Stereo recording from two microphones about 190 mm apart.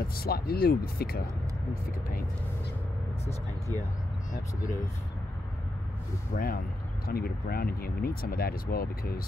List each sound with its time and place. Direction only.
0.2 s speech: 55° left (ahead or behind)
6.3 s speech: 50° left (ahead or behind)